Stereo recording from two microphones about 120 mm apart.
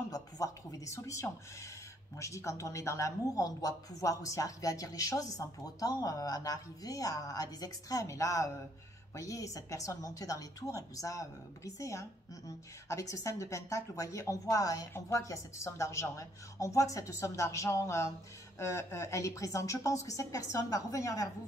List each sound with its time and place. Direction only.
0.1 s speech: 30° left (ahead or behind)